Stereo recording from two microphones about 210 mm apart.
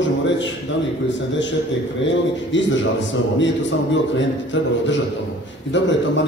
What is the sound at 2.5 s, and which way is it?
A man's voice, 60° left (ahead or behind).